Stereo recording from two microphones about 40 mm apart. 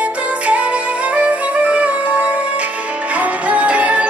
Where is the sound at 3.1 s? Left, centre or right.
Right.